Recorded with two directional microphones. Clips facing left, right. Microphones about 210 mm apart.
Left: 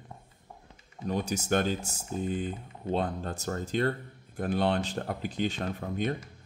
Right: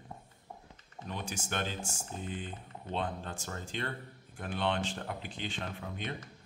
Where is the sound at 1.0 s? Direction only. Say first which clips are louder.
Left 9 dB; 40° left (ahead or behind).